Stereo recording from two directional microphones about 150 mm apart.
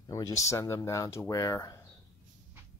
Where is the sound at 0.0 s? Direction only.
20° left (ahead or behind).